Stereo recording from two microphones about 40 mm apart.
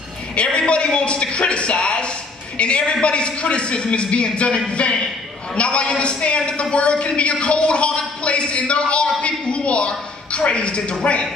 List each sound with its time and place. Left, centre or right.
0.4 s a man's voice: left